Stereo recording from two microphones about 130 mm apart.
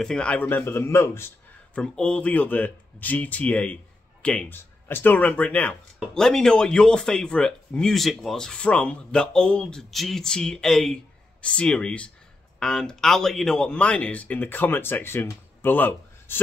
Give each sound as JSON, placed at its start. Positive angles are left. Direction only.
{"t": 0.0, "sound": "speech", "side_deg": 5}
{"t": 1.8, "sound": "speech", "side_deg": 5}